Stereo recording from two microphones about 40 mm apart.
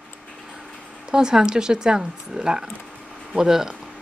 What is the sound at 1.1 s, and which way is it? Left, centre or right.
A woman's voice, centre.